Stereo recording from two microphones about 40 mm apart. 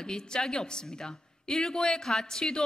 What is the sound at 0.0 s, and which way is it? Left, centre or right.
A woman's voice, centre.